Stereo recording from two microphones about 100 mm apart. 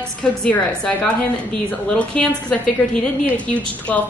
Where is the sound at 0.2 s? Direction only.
10° left (ahead or behind).